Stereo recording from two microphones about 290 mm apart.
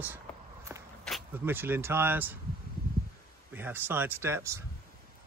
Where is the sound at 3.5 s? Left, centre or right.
Centre.